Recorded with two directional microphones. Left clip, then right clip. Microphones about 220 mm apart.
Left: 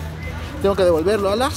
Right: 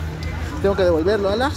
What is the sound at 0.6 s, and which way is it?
Speech, 25° left (ahead or behind).